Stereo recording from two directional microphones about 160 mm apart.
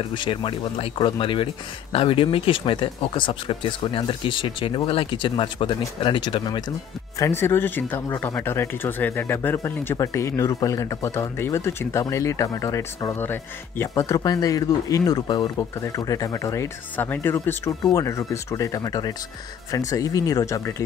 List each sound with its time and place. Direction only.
0.1 s speech: 30° left (ahead or behind)
7.2 s speech: 15° left (ahead or behind)